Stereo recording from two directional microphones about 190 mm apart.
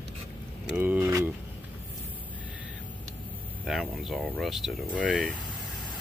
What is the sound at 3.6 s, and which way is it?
Speech, centre (ahead or behind).